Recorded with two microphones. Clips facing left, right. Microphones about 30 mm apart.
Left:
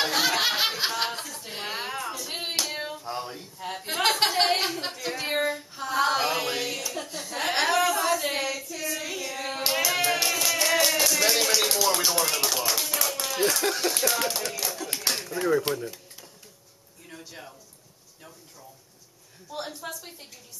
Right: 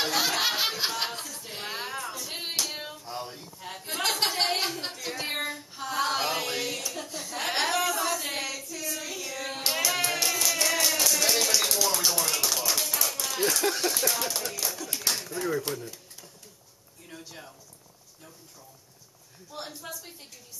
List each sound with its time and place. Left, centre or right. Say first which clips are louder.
0.0 s snicker: left 2 dB; centre
2.6 s clapping: left 3 dB; centre
4.1 s speech: left 3 dB; centre
9.6 s music: left 2 dB; centre
11.1 s a woman's voice: left 2 dB; centre
15.0 s a sound: left 2 dB; centre
19.6 s a woman's voice: left 3 dB; centre